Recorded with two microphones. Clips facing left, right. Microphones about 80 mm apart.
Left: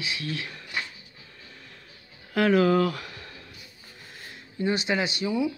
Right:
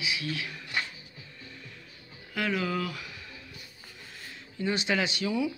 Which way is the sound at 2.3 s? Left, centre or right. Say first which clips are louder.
Left 10 dB; left.